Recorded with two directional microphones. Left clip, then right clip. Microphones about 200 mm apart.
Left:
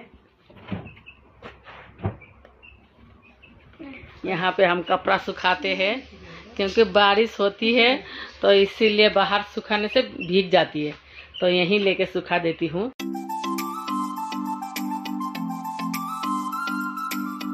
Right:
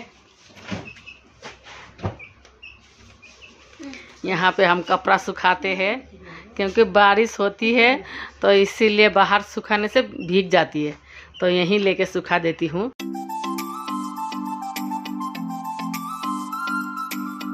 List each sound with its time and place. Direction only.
3.9 s a woman's voice: 25° right (ahead or behind)
12.9 s music: centre (ahead or behind)